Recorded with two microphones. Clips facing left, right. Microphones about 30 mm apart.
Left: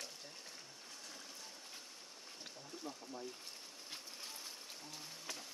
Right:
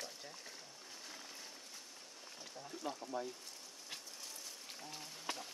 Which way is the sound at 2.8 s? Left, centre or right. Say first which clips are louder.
Right 6 dB; right.